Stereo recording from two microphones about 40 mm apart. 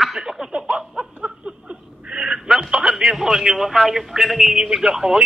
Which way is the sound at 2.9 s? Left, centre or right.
Centre.